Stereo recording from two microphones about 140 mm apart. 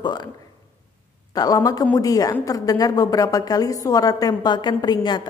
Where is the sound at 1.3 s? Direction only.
25° left (ahead or behind).